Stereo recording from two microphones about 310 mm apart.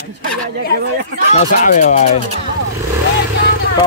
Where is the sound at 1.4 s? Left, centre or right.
Left.